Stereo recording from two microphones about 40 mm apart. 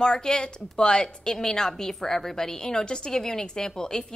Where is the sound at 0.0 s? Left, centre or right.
Centre.